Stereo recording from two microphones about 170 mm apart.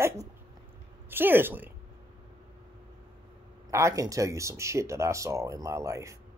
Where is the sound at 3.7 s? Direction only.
20° right (ahead or behind).